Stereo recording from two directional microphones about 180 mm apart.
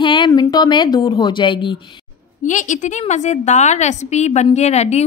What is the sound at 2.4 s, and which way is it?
A woman's voice, 45° left (ahead or behind).